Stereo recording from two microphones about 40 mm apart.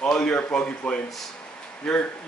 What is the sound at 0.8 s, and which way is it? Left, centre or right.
Speech, left.